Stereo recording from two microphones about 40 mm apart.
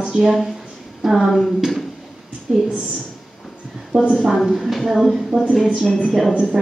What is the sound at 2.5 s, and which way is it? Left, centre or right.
Speech, right.